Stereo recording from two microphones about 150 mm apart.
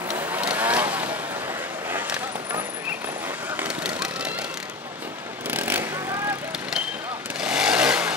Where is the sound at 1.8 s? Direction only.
15° right (ahead or behind).